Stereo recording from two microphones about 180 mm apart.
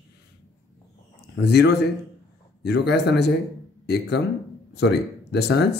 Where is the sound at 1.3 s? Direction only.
65° left (ahead or behind).